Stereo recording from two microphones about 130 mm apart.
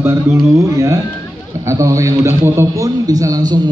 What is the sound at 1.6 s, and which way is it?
A man's voice, 25° right (ahead or behind).